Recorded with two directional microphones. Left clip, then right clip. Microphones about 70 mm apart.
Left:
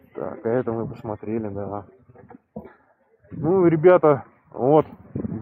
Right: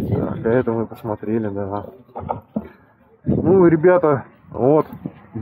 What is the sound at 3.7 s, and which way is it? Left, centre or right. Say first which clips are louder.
Speech: right 1 dB; left.